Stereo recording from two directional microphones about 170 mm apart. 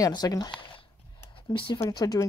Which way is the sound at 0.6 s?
30° left (ahead or behind).